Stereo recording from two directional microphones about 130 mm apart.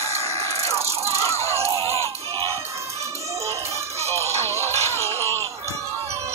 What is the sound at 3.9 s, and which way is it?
Music, 55° right (ahead or behind).